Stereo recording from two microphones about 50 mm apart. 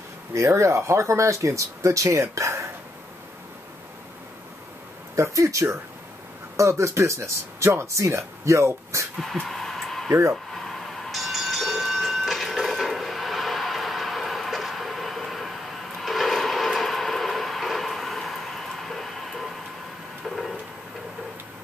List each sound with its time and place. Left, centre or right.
0.3 s speech: right
5.1 s speech: right
9.2 s a sound: centre